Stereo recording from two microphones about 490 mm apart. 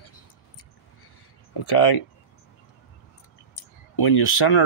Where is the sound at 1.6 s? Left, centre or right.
Left.